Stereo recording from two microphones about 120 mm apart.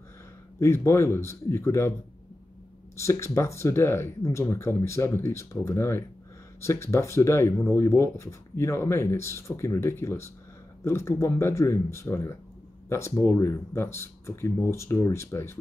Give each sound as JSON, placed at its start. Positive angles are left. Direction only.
{"t": 0.6, "sound": "speech", "side_deg": 20}
{"t": 3.0, "sound": "speech", "side_deg": 25}